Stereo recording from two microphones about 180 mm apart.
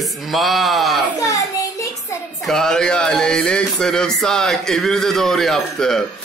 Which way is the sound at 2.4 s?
Centre (ahead or behind).